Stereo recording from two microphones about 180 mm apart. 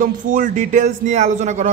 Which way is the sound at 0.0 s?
50° right (ahead or behind).